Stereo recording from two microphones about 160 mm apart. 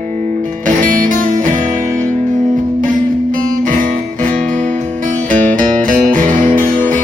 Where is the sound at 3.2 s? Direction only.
55° right (ahead or behind).